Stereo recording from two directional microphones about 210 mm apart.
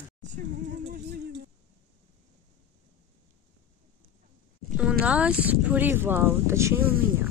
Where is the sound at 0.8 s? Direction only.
55° right (ahead or behind).